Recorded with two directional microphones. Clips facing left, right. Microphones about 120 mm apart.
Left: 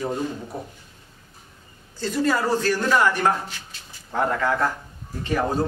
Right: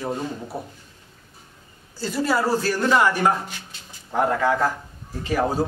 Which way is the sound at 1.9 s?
10° right (ahead or behind).